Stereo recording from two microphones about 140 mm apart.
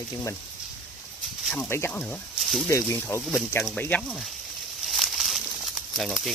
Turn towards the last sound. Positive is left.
turn(degrees=0)  # may be behind; listen again after turning